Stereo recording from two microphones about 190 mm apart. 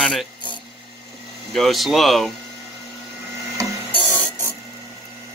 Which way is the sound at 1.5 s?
Centre (ahead or behind).